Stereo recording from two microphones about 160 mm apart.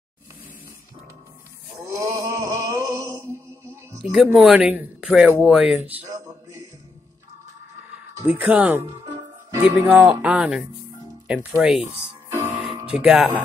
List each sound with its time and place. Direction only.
1.9 s a sound: 20° right (ahead or behind)
2.8 s music: 20° right (ahead or behind)
4.0 s speech: 5° right (ahead or behind)
8.2 s speech: 10° right (ahead or behind)
12.3 s music: 10° right (ahead or behind)
13.0 s speech: 5° right (ahead or behind)